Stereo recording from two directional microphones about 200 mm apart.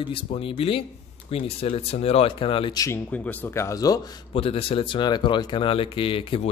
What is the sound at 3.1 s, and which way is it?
Speech, 10° left (ahead or behind).